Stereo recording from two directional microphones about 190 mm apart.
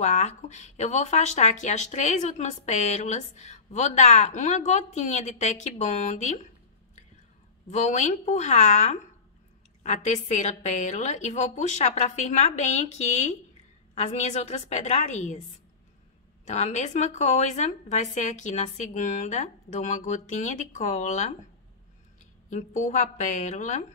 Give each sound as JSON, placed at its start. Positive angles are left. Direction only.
{"t": 0.0, "sound": "speech", "side_deg": 35}
{"t": 7.7, "sound": "speech", "side_deg": 40}
{"t": 16.4, "sound": "speech", "side_deg": 35}
{"t": 22.5, "sound": "speech", "side_deg": 40}